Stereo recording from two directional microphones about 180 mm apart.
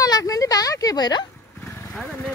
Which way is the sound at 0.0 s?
20° left (ahead or behind).